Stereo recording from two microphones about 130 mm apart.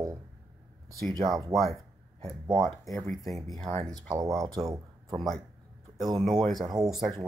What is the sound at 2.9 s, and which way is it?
Speech, centre (ahead or behind).